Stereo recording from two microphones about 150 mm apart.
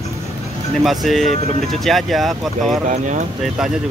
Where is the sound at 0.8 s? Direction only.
Centre (ahead or behind).